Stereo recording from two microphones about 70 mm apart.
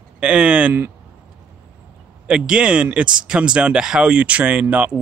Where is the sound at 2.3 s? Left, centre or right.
Centre.